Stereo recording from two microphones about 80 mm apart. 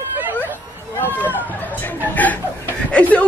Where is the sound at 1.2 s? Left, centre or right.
Left.